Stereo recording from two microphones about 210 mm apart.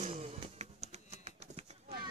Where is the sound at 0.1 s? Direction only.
30° right (ahead or behind).